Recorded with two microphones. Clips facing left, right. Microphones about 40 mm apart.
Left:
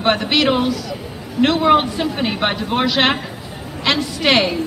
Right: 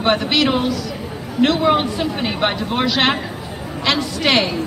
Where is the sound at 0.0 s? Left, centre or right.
Centre.